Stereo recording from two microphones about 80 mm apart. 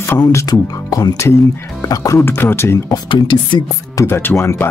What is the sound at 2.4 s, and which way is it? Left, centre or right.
Speech, left.